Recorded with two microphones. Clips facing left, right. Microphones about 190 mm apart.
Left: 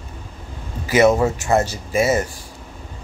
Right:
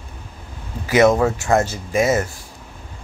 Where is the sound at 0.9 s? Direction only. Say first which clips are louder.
Even; 10° left (ahead or behind).